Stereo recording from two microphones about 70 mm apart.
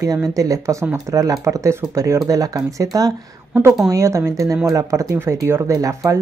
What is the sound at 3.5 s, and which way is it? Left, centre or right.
A woman's voice, right.